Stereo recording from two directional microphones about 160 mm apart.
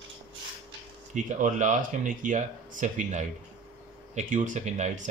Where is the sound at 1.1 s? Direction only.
50° right (ahead or behind).